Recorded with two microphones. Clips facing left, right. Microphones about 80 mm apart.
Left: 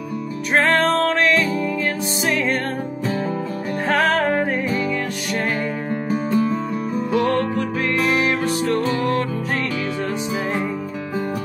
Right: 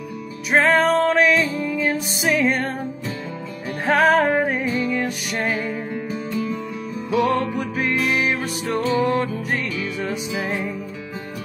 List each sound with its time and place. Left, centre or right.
0.5 s music: centre
3.8 s music: centre
6.3 s music: left